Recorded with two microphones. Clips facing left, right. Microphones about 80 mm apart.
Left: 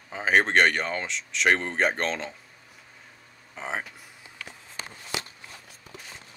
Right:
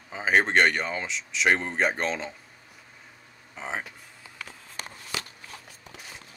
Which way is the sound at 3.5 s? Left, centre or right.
Centre.